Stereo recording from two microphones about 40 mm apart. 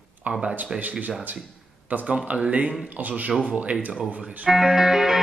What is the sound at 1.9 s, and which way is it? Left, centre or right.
Speech, right.